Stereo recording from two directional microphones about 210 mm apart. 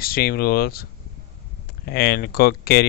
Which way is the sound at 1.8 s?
50° left (ahead or behind).